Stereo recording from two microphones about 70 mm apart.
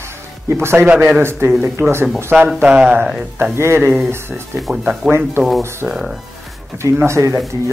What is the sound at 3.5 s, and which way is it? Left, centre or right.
Speech, right.